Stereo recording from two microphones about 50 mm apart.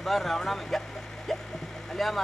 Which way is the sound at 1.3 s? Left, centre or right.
Centre.